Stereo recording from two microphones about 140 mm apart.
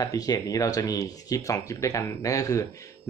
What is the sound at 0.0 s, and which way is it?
Speech, 25° left (ahead or behind).